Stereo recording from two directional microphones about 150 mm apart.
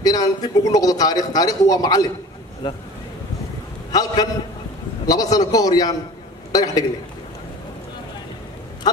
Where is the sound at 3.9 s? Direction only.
25° left (ahead or behind).